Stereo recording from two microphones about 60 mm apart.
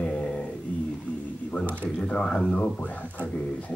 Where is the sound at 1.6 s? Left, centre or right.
Right.